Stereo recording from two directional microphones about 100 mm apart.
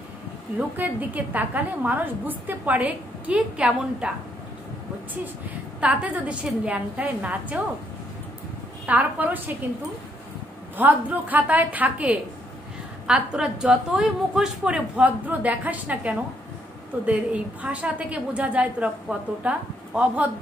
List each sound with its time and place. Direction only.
0.6 s a woman's voice: 15° right (ahead or behind)
5.8 s a woman's voice: 15° right (ahead or behind)
8.8 s a woman's voice: 15° right (ahead or behind)
10.8 s a woman's voice: 15° right (ahead or behind)